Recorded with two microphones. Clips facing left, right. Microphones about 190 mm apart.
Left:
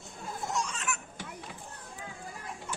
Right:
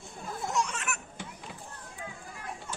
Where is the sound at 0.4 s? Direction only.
65° right (ahead or behind).